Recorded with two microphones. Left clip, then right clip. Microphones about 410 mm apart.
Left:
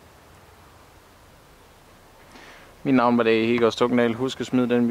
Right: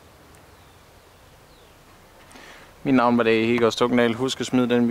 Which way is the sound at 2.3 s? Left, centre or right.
Centre.